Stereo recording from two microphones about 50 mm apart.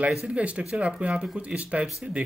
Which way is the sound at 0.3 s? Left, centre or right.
Right.